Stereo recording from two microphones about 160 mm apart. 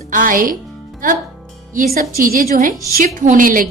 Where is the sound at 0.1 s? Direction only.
60° right (ahead or behind).